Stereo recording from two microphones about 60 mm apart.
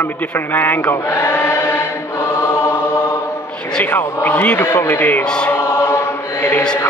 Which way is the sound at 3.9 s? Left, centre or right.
Left.